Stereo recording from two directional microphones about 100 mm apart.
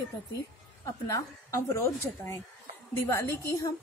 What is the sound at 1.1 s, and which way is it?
A woman's voice, 35° left (ahead or behind).